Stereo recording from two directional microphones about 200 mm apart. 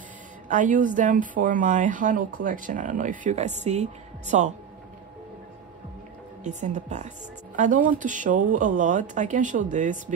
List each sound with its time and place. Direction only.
0.5 s speech: 40° right (ahead or behind)
6.4 s a woman's voice: 35° right (ahead or behind)